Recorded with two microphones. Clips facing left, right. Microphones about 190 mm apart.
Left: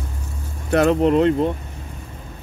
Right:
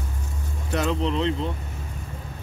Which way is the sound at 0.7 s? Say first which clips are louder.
Left 9 dB; 55° left (ahead or behind).